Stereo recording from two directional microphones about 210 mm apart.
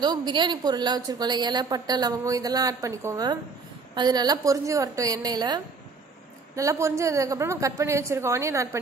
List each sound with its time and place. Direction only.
0.0 s a woman's voice: 20° right (ahead or behind)